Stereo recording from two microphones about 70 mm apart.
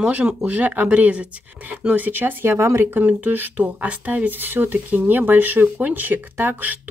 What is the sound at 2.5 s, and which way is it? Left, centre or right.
Speech, right.